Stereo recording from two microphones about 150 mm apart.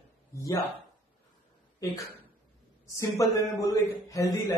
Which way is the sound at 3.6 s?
20° left (ahead or behind).